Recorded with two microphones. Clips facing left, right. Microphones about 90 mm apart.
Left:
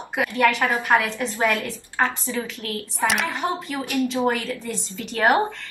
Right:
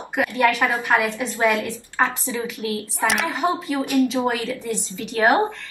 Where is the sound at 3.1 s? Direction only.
Centre (ahead or behind).